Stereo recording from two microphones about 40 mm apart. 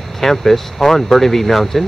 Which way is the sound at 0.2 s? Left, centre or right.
Centre.